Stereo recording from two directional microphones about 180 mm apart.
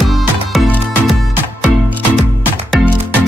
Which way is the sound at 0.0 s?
Centre (ahead or behind).